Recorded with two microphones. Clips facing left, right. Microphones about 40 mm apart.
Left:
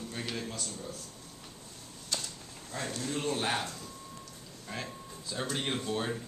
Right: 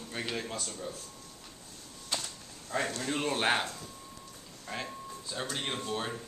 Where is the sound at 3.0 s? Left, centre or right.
Right.